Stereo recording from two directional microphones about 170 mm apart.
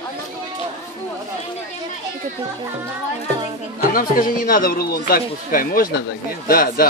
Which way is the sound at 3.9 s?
50° left (ahead or behind).